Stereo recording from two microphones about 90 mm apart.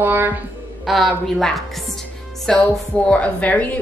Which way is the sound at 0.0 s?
25° right (ahead or behind).